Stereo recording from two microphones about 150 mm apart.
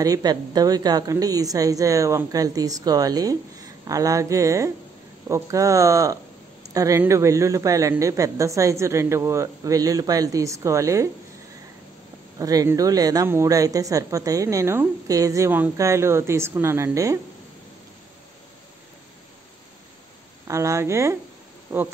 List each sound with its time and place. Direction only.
0.0 s speech: 25° right (ahead or behind)
12.4 s speech: 25° right (ahead or behind)
20.4 s speech: 20° right (ahead or behind)